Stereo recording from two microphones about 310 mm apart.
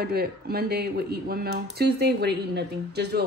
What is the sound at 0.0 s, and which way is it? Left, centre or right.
Speech, right.